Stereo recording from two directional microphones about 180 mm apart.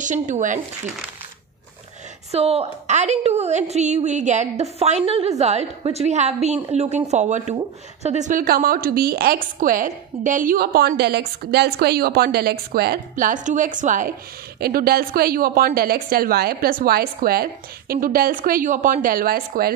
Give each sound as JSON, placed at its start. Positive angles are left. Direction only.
{"t": 0.0, "sound": "speech", "side_deg": -45}
{"t": 2.3, "sound": "a woman's voice", "side_deg": -35}
{"t": 14.6, "sound": "a woman's voice", "side_deg": -60}